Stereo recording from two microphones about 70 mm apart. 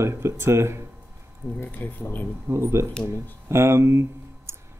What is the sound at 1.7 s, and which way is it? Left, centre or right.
Speech, left.